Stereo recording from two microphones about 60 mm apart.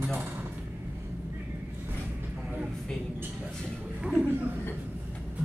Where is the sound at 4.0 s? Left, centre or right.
Centre.